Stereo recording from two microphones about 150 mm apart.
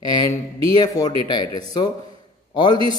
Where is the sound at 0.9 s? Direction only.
30° left (ahead or behind).